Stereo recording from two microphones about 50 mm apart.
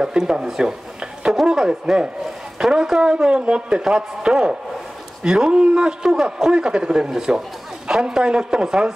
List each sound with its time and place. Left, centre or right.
0.0 s a man's voice: centre
1.3 s a sound: centre
2.6 s a man's voice: centre